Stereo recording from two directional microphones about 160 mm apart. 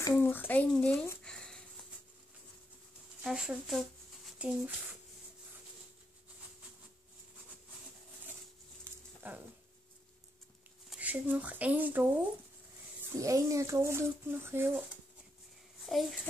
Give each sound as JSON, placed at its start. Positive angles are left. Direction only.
{"t": 0.1, "sound": "speech", "side_deg": 10}
{"t": 1.2, "sound": "a sound", "side_deg": 5}
{"t": 3.3, "sound": "speech", "side_deg": -5}
{"t": 8.8, "sound": "a sound", "side_deg": -10}
{"t": 10.9, "sound": "speech", "side_deg": -10}
{"t": 13.2, "sound": "speech", "side_deg": -20}
{"t": 15.8, "sound": "a child's voice", "side_deg": 0}